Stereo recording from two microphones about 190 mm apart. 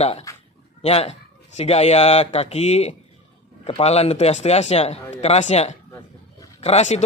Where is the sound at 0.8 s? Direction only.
30° left (ahead or behind).